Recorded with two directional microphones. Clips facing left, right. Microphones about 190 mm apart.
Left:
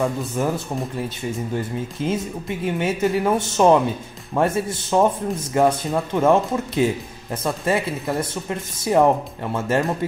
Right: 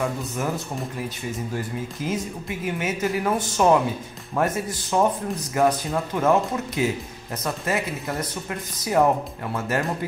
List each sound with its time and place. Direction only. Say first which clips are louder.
0.4 s speech: left 5 dB; 30° left (ahead or behind)